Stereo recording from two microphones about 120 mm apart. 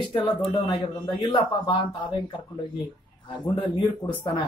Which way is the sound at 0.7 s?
40° left (ahead or behind).